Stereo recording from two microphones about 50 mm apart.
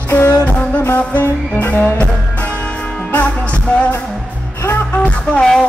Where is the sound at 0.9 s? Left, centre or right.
Left.